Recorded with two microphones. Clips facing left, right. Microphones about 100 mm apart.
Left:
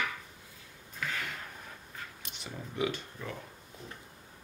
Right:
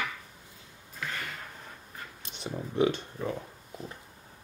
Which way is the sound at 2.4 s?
35° right (ahead or behind).